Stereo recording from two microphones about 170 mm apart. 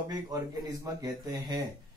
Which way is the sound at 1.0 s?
20° right (ahead or behind).